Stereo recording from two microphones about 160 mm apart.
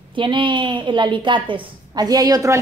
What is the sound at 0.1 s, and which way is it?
A woman's voice, 30° right (ahead or behind).